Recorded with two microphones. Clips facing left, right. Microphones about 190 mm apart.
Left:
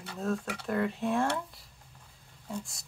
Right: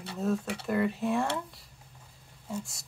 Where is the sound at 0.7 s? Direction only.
5° right (ahead or behind).